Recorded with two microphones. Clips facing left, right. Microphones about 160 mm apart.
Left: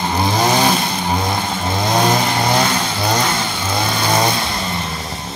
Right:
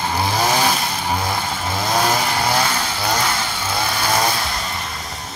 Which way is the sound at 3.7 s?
20° left (ahead or behind).